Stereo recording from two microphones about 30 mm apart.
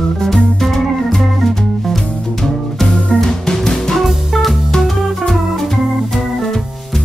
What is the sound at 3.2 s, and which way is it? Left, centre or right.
Music, centre.